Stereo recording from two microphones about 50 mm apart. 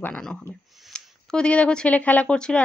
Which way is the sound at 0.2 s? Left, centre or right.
Centre.